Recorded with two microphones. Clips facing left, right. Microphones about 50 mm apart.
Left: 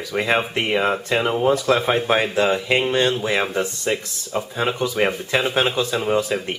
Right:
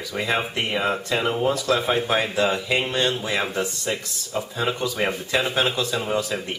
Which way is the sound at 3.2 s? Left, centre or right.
Left.